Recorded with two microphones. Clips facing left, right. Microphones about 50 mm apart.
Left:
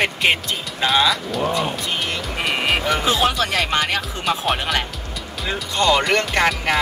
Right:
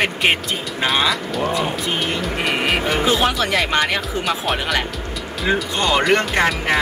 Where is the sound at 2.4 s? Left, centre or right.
Centre.